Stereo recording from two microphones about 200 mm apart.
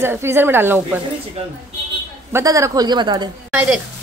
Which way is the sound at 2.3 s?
15° right (ahead or behind).